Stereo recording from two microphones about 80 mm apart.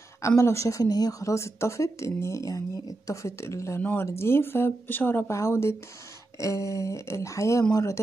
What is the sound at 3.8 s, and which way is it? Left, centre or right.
Speech, left.